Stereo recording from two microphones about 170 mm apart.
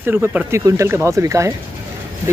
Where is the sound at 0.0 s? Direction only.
10° right (ahead or behind).